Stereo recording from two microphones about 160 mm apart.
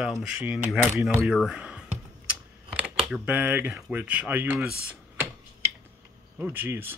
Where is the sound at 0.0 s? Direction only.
5° right (ahead or behind).